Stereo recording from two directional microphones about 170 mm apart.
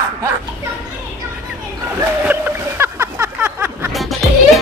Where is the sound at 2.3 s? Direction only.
10° right (ahead or behind).